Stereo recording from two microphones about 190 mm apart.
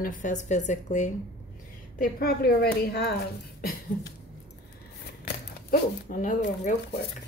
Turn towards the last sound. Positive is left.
turn(degrees=40)  # may be behind; listen again after turning